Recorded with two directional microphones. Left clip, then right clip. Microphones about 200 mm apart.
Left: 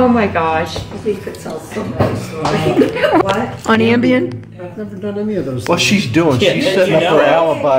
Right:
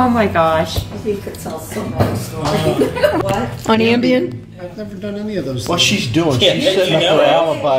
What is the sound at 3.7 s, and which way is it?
Speech, 5° right (ahead or behind).